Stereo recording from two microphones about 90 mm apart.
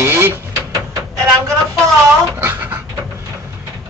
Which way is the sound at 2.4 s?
25° right (ahead or behind).